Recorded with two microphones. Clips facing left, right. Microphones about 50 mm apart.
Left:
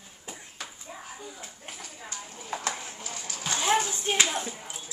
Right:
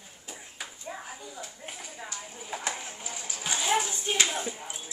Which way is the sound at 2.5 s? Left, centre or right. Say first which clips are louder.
Left 2 dB; centre.